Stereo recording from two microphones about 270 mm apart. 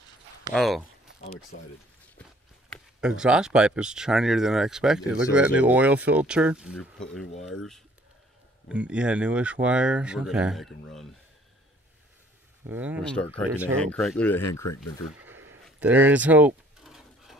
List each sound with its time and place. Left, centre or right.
0.6 s speech: centre
2.7 s speech: centre
8.6 s speech: centre
12.6 s speech: centre
14.4 s speech: left
15.6 s a sound: centre